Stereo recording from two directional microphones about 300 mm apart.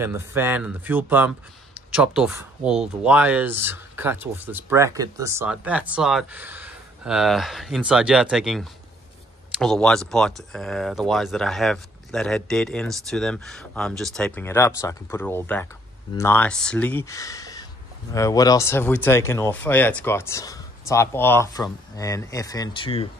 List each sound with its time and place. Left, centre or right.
0.0 s speech: centre